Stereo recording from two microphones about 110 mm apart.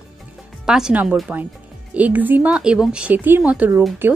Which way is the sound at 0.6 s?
5° right (ahead or behind).